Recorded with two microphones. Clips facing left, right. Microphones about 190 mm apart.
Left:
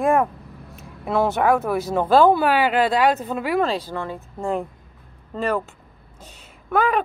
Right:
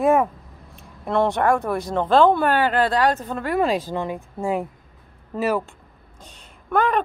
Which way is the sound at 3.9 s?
15° right (ahead or behind).